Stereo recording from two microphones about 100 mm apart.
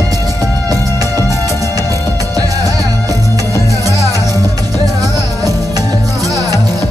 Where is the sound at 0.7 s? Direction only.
35° right (ahead or behind).